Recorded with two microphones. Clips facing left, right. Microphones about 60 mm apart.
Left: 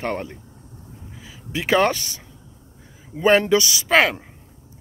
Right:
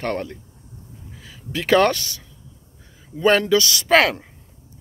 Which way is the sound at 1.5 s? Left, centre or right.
Centre.